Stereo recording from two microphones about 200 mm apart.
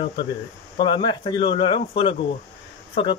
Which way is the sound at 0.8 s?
20° left (ahead or behind).